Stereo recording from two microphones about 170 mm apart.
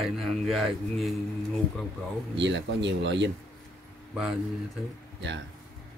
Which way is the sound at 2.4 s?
90° right.